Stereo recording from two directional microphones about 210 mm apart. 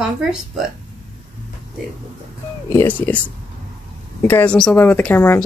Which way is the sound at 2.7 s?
10° left (ahead or behind).